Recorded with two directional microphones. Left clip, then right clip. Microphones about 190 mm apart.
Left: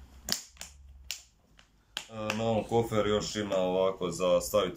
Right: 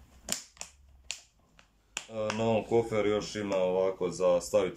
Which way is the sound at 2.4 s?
10° right (ahead or behind).